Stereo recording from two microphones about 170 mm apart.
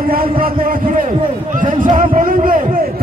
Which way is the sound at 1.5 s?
50° right (ahead or behind).